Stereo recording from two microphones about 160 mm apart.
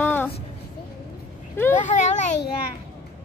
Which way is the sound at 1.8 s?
50° left (ahead or behind).